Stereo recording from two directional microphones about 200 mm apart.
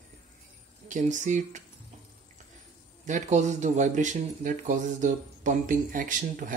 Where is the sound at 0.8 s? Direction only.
40° right (ahead or behind).